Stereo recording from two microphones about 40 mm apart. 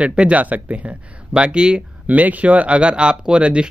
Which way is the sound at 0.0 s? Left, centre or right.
Right.